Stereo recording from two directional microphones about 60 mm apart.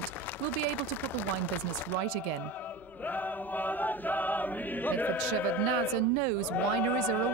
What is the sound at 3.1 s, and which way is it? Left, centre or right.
Chant, left.